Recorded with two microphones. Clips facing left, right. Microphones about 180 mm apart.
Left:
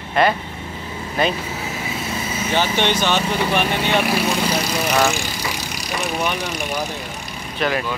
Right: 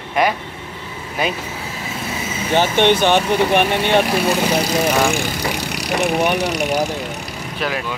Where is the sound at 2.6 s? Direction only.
55° right (ahead or behind).